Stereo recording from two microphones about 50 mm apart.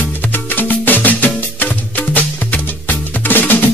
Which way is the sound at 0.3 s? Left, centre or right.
Left.